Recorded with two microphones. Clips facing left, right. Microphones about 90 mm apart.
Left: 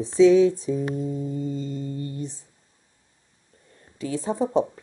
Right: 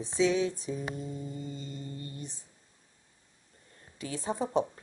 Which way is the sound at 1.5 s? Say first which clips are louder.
Left 11 dB; 90° left.